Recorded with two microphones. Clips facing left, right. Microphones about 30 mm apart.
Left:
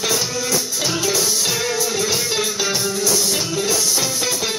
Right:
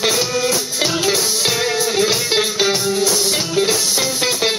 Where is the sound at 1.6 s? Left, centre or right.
Right.